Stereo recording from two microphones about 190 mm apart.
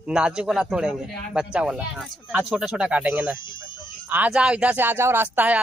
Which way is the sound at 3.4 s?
25° left (ahead or behind).